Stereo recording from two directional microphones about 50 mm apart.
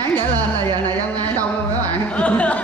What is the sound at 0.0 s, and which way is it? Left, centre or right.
Music, left.